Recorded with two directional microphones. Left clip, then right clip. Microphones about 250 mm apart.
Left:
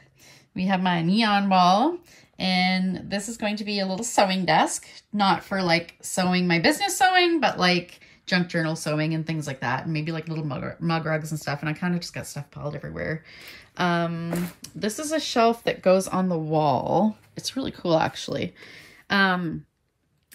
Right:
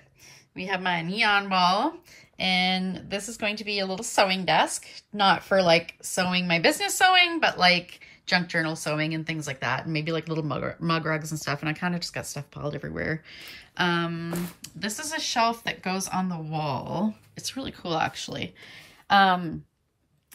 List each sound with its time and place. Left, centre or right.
0.8 s a woman's voice: centre
19.2 s speech: right